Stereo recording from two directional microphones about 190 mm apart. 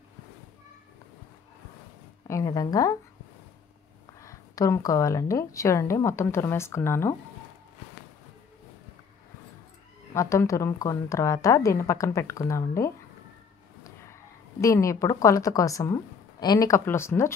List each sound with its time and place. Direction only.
2.2 s a woman's voice: 15° left (ahead or behind)
4.2 s a woman's voice: 15° left (ahead or behind)
10.1 s a woman's voice: 15° left (ahead or behind)
14.6 s a woman's voice: 15° left (ahead or behind)